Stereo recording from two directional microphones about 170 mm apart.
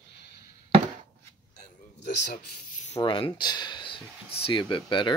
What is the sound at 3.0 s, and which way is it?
Speech, 30° left (ahead or behind).